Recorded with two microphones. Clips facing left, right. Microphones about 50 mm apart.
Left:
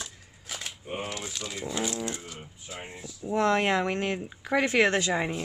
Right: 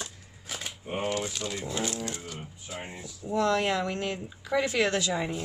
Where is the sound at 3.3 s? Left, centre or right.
Left.